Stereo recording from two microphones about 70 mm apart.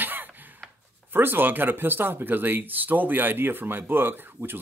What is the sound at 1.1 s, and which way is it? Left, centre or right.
Speech, right.